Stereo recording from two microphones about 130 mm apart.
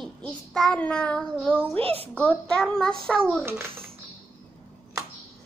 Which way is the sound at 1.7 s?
50° right (ahead or behind).